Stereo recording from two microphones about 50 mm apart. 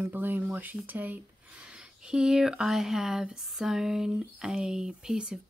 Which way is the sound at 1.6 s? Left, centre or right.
Centre.